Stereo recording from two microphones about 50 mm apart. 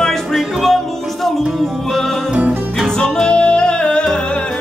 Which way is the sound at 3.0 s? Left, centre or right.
Centre.